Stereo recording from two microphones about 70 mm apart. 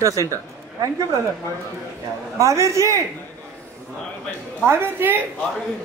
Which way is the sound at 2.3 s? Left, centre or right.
Right.